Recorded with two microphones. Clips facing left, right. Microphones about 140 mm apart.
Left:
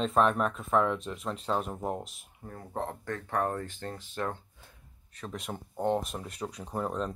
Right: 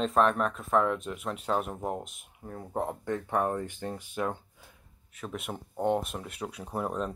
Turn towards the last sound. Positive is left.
turn(degrees=-10)  # may be behind; listen again after turning